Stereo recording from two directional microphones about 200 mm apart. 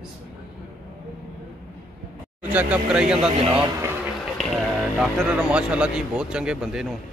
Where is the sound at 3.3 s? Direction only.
25° right (ahead or behind).